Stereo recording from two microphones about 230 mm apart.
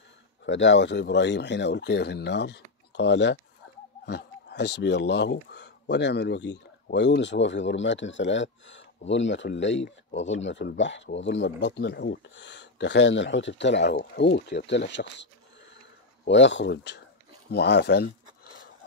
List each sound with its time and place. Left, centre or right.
0.5 s speech: left
16.3 s speech: left